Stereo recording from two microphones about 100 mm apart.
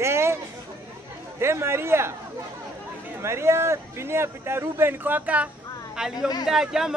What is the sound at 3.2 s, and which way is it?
Speech, 25° right (ahead or behind).